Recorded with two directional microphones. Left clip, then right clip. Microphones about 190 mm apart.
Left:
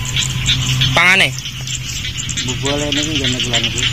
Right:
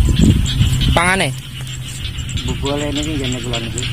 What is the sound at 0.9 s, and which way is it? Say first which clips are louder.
Speech: left 4 dB; 10° right (ahead or behind).